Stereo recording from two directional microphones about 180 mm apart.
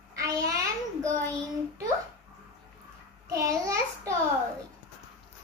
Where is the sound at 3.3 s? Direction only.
15° right (ahead or behind).